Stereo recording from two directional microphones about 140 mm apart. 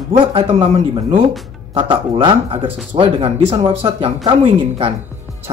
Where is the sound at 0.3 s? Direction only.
45° right (ahead or behind).